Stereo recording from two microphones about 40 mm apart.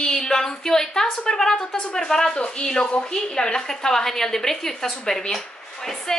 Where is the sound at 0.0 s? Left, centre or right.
Centre.